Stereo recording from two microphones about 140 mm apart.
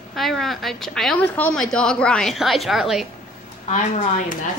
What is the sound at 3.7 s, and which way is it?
Speech, 60° left (ahead or behind).